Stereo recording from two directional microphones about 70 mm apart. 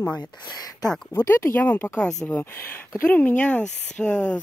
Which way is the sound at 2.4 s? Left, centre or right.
Left.